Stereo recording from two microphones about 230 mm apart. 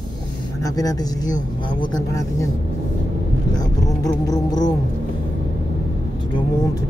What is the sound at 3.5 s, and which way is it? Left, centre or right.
Speech, centre.